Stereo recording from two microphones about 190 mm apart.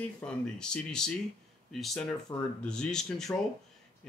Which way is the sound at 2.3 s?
15° left (ahead or behind).